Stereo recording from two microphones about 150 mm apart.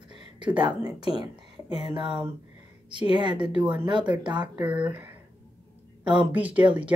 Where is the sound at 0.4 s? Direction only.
30° right (ahead or behind).